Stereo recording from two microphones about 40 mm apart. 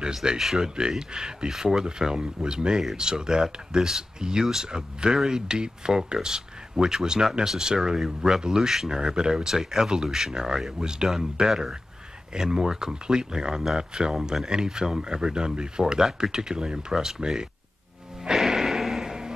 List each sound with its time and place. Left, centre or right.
0.1 s speech: centre
0.4 s speech: centre
0.7 s speech: centre
18.3 s a sound: centre